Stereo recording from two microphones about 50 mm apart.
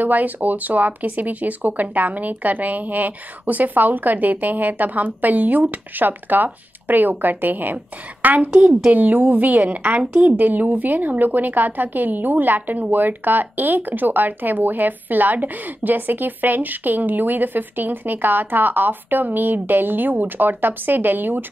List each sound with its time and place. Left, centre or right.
0.0 s a woman's voice: right